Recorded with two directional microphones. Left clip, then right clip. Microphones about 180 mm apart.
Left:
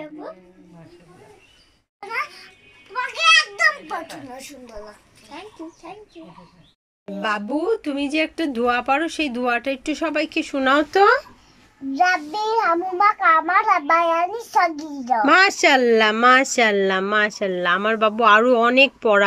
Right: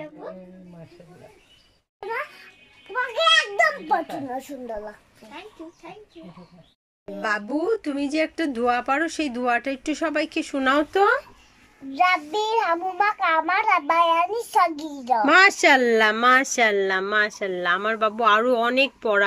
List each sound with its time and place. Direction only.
2.9 s children playing: 35° right (ahead or behind)
7.1 s speech: centre (ahead or behind)
11.9 s child singing: 10° right (ahead or behind)
15.0 s speech: 5° right (ahead or behind)